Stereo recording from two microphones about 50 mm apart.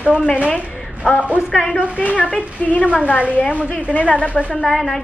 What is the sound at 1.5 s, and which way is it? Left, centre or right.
A woman's voice, left.